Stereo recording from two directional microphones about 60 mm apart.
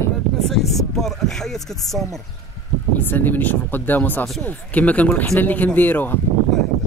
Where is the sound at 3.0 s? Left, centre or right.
Left.